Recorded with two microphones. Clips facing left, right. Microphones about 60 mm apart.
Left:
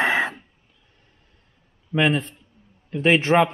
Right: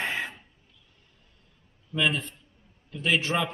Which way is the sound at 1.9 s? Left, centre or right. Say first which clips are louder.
Left 6 dB; left.